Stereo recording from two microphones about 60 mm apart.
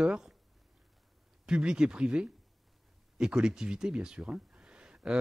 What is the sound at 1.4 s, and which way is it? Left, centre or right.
Speech, centre.